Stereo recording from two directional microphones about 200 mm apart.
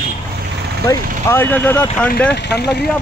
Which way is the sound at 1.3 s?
10° left (ahead or behind).